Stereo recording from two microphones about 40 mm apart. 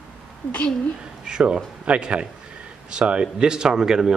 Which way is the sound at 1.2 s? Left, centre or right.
Right.